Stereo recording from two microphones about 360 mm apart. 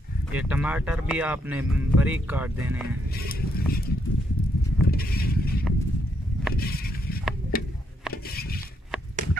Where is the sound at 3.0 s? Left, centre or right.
Left.